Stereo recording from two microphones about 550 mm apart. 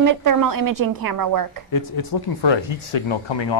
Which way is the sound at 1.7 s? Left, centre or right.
Left.